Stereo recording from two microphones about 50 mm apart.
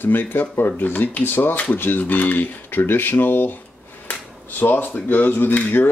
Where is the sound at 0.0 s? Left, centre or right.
Left.